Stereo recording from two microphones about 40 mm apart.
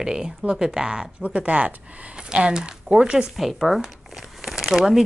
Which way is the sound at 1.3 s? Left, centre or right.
Right.